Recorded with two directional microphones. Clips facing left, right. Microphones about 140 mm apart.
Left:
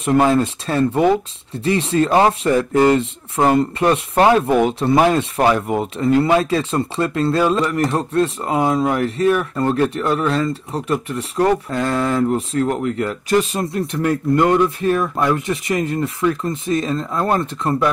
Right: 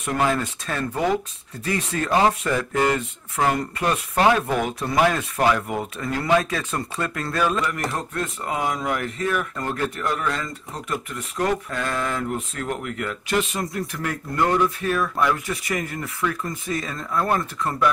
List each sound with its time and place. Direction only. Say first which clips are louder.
0.0 s speech: left 8 dB; 30° left (ahead or behind)